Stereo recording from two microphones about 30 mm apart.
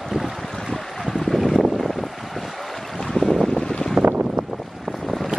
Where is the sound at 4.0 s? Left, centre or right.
Right.